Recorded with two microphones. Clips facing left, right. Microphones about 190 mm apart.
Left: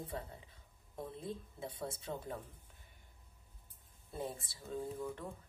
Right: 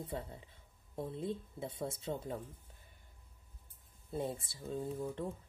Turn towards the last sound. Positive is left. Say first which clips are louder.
# right 2 dB
turn(degrees=-25)  # may be behind; listen again after turning